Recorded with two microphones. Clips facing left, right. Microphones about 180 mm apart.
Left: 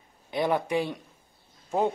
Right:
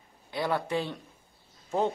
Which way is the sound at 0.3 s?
20° left (ahead or behind).